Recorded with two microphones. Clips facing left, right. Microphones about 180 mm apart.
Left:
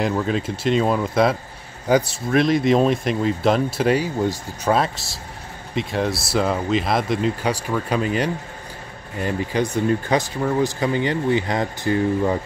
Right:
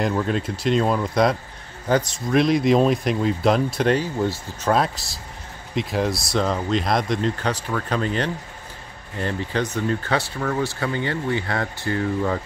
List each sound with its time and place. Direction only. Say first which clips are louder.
0.0 s speech: left 1 dB; centre (ahead or behind)
2.3 s speech: even; centre (ahead or behind)
4.7 s speech: even; centre (ahead or behind); by 12.4 s 15° left (ahead or behind)